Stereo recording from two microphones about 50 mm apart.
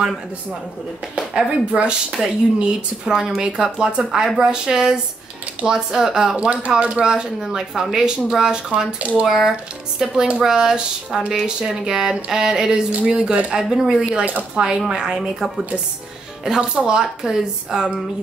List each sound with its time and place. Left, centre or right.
1.3 s speech: centre
16.7 s speech: centre